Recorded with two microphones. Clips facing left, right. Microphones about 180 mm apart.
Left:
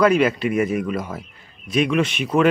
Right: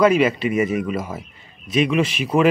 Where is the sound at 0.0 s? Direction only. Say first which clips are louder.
Right 1 dB; centre (ahead or behind).